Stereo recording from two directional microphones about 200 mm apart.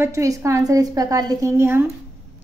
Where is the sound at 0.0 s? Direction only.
15° right (ahead or behind).